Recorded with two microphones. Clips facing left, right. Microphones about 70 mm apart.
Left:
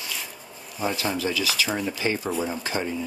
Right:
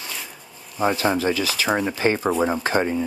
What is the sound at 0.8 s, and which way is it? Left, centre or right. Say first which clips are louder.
Speech: right 6 dB; right.